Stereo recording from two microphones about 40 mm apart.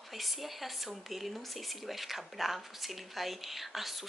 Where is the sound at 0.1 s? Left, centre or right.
Centre.